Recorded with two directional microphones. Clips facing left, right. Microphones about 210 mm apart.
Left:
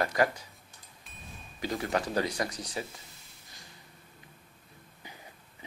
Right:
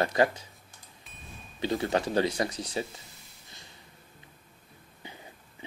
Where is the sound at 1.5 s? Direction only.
30° right (ahead or behind).